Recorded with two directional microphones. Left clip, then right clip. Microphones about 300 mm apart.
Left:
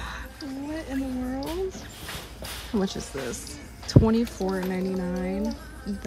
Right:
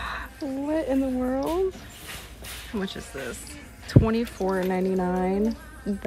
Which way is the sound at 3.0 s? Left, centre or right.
Centre.